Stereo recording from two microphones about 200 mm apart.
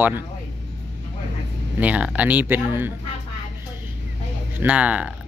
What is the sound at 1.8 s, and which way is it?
Speech, 5° right (ahead or behind).